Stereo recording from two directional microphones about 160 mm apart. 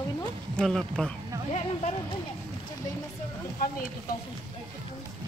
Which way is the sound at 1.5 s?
40° left (ahead or behind).